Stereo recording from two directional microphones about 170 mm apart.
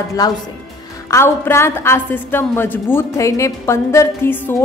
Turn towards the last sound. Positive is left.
turn(degrees=15)  # may be behind; listen again after turning